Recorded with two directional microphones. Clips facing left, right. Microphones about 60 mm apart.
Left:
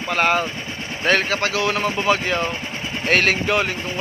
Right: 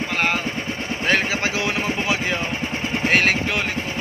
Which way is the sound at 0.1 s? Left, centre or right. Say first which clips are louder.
Left 5 dB; centre.